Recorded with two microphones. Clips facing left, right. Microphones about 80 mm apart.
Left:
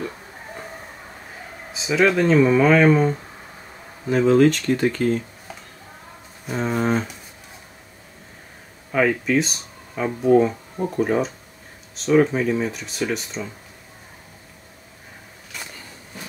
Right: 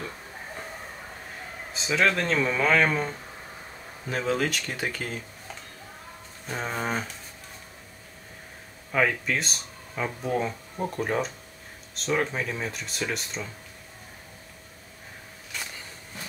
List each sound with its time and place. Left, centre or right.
1.7 s speech: centre
4.1 s speech: centre
6.4 s speech: centre
8.9 s speech: centre